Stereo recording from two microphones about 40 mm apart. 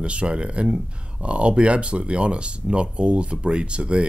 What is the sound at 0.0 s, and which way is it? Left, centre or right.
Speech, right.